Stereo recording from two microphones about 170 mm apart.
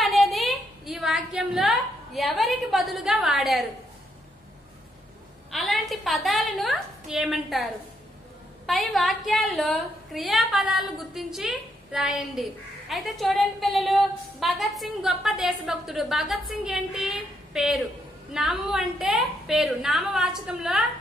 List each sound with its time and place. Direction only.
0.0 s a sound: centre (ahead or behind)
5.5 s a woman's voice: centre (ahead or behind)
8.6 s a woman's voice: centre (ahead or behind)